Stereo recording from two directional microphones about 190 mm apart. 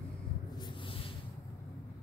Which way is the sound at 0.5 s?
25° left (ahead or behind).